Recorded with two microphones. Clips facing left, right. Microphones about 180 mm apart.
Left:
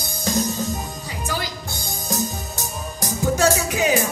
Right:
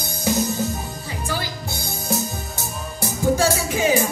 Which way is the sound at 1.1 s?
15° left (ahead or behind).